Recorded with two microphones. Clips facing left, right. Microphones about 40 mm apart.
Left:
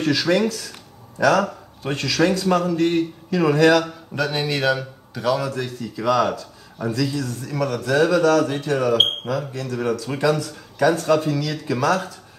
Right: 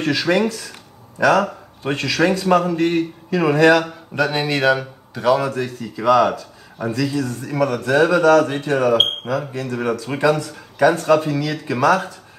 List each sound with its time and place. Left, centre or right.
0.0 s speech: centre
8.9 s speech: centre